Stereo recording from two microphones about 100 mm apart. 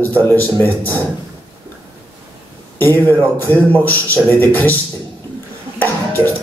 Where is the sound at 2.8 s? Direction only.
20° left (ahead or behind).